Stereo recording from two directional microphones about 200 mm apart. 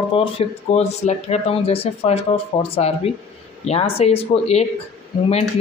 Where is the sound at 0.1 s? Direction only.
30° left (ahead or behind).